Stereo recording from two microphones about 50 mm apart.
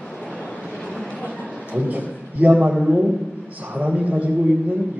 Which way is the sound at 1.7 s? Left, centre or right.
Right.